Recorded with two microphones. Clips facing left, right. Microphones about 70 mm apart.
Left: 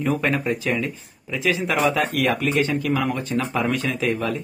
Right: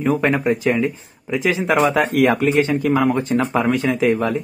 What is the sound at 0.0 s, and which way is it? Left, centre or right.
Speech, centre.